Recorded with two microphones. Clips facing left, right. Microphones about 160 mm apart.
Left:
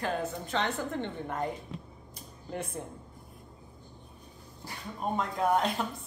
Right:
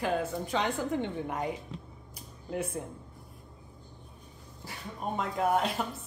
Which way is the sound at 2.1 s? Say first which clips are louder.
Right 3 dB; 5° right (ahead or behind).